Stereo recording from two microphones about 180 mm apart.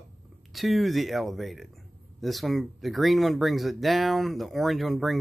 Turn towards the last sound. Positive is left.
turn(degrees=0)  # may be behind; listen again after turning